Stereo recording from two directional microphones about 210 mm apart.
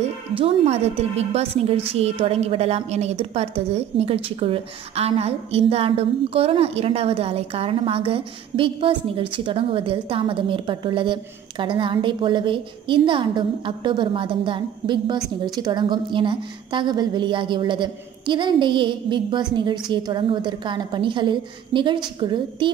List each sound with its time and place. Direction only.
0.4 s a woman's voice: 30° right (ahead or behind)